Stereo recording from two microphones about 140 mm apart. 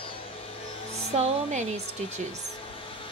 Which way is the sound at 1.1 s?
60° right (ahead or behind).